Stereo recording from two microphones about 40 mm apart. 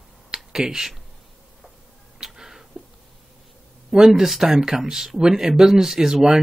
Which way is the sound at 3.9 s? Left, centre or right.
Centre.